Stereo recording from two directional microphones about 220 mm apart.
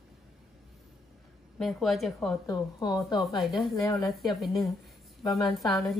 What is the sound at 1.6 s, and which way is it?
Speech, centre (ahead or behind).